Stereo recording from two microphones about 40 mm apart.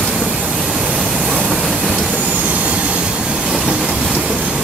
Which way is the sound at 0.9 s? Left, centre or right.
Centre.